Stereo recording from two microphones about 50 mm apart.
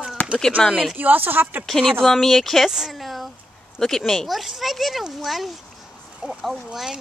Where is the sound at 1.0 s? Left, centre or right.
Right.